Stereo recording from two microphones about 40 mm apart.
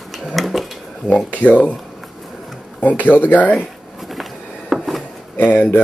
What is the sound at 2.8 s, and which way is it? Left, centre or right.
Speech, left.